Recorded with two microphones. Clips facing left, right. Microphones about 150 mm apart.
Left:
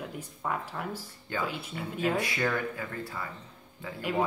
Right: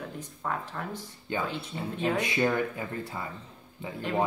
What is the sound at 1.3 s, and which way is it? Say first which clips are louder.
Speech: right 1 dB; 20° right (ahead or behind).